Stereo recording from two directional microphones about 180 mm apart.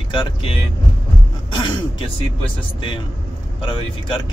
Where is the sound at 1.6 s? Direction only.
30° left (ahead or behind).